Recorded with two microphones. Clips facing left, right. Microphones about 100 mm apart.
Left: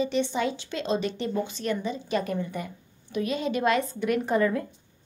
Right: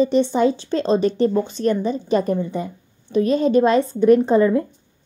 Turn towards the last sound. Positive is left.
turn(degrees=-25)  # may be behind; listen again after turning